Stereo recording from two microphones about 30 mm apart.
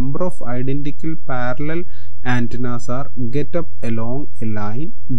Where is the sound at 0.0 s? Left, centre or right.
Right.